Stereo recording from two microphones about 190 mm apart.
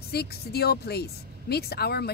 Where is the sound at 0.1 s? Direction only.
55° left (ahead or behind).